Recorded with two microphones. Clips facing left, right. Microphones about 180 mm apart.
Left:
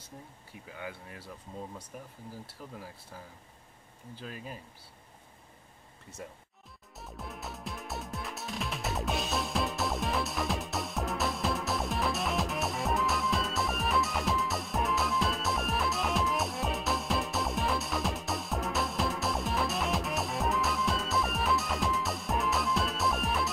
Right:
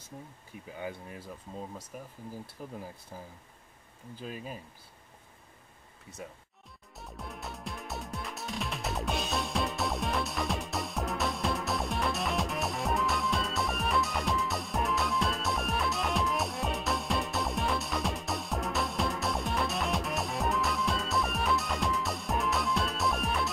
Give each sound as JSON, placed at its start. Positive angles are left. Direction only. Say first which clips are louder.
{"t": 0.7, "sound": "speech", "louder": "right 3 dB", "side_deg": -20}
{"t": 4.2, "sound": "speech", "louder": "right 3 dB", "side_deg": -15}
{"t": 7.0, "sound": "music", "louder": "even", "side_deg": 0}